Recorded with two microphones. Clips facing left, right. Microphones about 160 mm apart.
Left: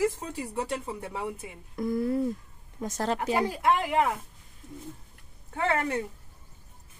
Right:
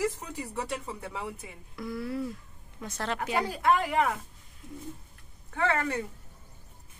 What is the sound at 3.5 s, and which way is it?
Speech, 20° left (ahead or behind).